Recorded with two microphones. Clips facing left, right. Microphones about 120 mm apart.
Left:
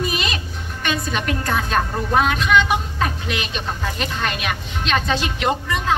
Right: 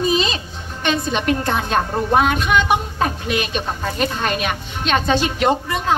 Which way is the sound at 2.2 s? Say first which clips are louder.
Right 1 dB; 50° right (ahead or behind).